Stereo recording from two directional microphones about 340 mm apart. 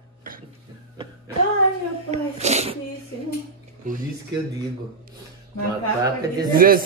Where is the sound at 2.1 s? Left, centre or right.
Centre.